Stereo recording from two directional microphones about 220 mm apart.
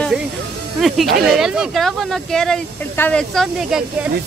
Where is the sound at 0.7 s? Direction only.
Centre (ahead or behind).